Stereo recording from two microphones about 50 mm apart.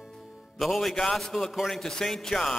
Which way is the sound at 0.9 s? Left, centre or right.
Centre.